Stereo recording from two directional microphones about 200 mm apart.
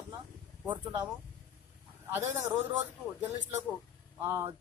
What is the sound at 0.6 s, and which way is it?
Speech, 25° right (ahead or behind).